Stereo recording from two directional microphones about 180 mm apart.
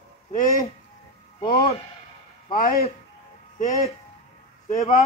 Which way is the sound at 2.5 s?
50° left (ahead or behind).